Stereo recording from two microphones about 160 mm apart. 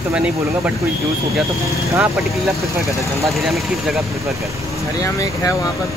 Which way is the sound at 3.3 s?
Centre (ahead or behind).